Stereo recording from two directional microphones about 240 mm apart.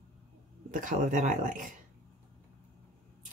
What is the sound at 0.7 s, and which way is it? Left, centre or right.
Speech, right.